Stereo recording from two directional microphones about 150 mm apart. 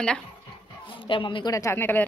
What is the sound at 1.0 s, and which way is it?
Speech, 35° left (ahead or behind).